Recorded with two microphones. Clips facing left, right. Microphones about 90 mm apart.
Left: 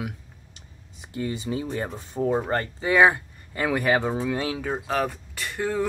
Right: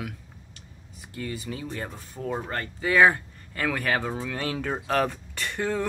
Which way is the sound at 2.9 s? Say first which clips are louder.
Left 1 dB; 15° left (ahead or behind).